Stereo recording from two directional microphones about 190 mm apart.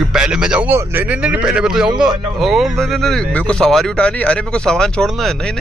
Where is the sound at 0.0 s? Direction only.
5° right (ahead or behind).